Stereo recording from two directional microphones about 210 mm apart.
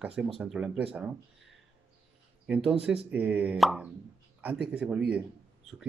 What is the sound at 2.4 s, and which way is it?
Speech, 5° right (ahead or behind).